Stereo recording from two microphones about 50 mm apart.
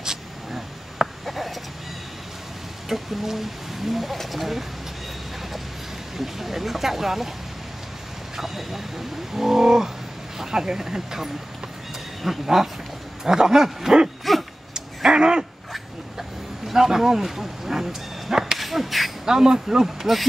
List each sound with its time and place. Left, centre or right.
0.0 s writing: centre
2.9 s speech: centre
6.1 s speech: centre
8.4 s speech: centre
14.7 s a sound: centre
15.7 s a sound: centre
18.6 s owl: centre
19.2 s speech: centre